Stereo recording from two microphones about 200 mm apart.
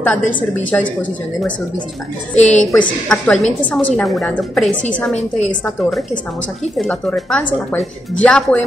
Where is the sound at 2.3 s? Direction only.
35° left (ahead or behind).